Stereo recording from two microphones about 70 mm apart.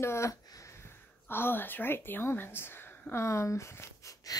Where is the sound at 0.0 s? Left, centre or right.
Left.